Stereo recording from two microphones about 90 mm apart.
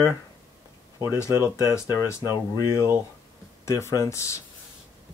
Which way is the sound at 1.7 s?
35° left (ahead or behind).